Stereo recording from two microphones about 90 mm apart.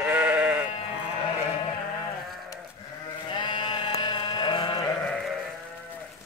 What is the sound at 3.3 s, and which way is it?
Sheep, 60° left (ahead or behind).